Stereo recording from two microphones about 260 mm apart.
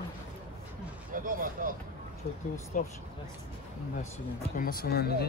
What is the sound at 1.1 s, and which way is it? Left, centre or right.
Speech, right.